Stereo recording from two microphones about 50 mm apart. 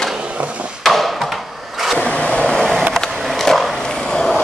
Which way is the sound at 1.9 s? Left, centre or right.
Left.